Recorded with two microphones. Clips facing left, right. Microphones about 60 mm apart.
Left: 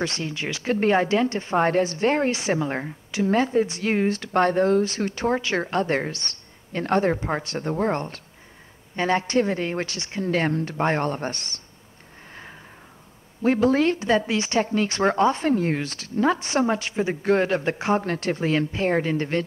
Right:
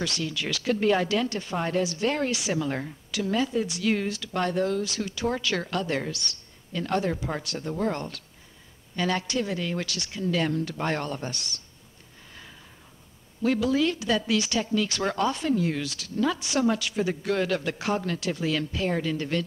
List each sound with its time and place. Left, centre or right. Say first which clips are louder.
0.0 s a woman's voice: left 3 dB; left
1.6 s a woman's voice: left 6 dB; left
13.4 s a woman's voice: left 4 dB; left